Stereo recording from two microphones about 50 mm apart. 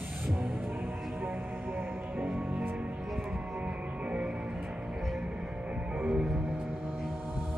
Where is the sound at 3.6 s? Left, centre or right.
Right.